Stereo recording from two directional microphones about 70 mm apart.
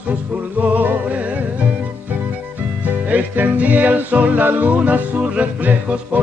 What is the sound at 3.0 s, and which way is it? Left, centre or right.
Music, right.